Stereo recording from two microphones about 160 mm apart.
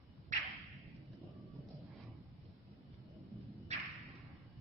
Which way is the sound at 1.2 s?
Centre (ahead or behind).